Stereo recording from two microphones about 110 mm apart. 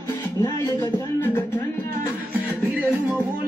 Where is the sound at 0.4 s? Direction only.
25° left (ahead or behind).